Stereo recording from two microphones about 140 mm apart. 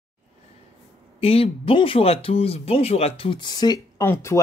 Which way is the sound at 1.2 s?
45° left (ahead or behind).